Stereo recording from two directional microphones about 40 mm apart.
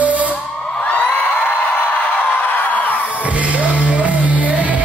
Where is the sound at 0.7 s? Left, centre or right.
Left.